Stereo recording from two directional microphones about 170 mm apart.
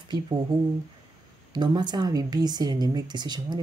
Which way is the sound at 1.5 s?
25° right (ahead or behind).